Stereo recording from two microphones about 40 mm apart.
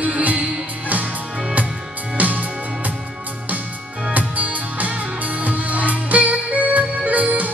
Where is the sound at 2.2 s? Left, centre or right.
Right.